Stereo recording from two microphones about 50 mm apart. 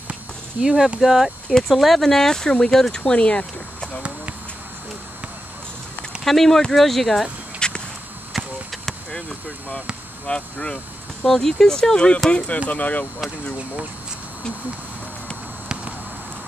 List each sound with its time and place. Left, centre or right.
0.1 s speech: centre; by 3.4 s left
6.2 s speech: centre
7.6 s a sound: centre
10.2 s speech: centre
12.5 s speech: left